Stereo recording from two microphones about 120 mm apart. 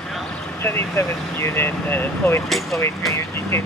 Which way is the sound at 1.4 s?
20° left (ahead or behind).